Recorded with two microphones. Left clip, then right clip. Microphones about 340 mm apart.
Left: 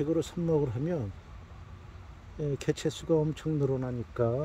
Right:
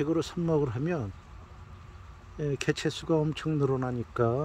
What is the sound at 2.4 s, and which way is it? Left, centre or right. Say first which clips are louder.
Speech: right 2 dB; centre.